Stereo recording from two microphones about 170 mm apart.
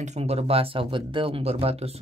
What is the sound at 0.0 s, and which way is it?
Speech, 40° right (ahead or behind).